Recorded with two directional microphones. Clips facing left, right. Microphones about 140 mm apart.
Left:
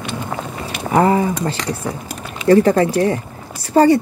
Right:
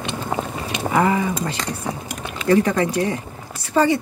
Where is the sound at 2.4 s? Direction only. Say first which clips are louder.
Left 5 dB; 35° left (ahead or behind).